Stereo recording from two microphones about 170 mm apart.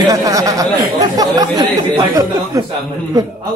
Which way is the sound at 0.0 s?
20° right (ahead or behind).